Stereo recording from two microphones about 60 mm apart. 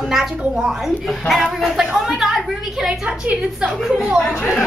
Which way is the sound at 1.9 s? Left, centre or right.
Centre.